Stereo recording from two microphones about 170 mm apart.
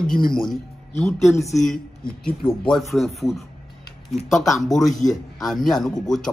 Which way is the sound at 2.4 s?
30° left (ahead or behind).